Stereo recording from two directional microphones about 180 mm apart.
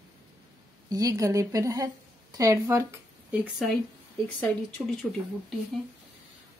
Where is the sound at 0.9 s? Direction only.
20° right (ahead or behind).